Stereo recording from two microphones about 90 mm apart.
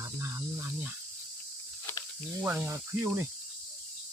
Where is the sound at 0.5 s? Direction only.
20° right (ahead or behind).